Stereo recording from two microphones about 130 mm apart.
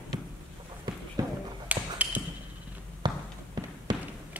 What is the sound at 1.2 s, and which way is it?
Basketball bounce, 25° right (ahead or behind).